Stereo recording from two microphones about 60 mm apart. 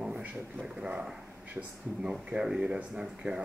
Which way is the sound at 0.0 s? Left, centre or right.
Centre.